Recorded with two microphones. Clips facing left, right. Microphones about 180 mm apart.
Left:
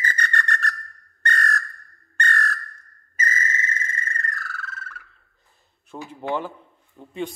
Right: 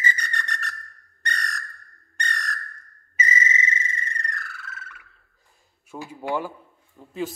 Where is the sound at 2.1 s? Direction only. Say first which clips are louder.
Left 6 dB; 15° right (ahead or behind).